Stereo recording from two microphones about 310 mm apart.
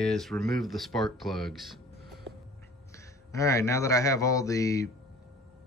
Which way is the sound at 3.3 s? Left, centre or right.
Centre.